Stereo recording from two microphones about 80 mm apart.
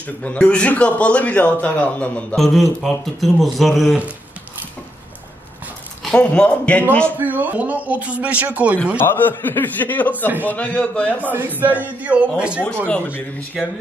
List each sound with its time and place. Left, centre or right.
0.0 s a man's voice: centre
2.3 s speech: centre
6.1 s a man's voice: centre
7.2 s speech: right
9.0 s a man's voice: left
11.3 s speech: right
12.6 s a man's voice: centre
13.5 s speech: centre